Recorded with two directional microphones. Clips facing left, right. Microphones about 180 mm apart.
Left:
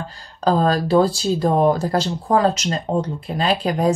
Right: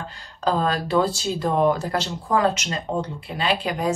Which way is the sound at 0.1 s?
40° left (ahead or behind).